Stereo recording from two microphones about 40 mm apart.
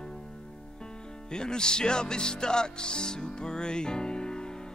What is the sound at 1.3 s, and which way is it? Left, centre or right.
Speech, centre.